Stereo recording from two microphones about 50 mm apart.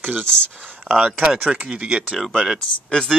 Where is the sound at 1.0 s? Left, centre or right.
Centre.